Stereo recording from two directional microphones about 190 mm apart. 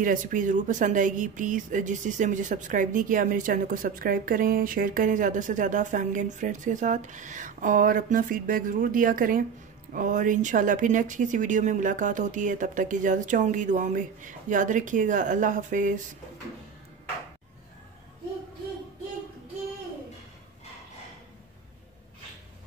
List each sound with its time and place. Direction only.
0.0 s speech: 45° right (ahead or behind)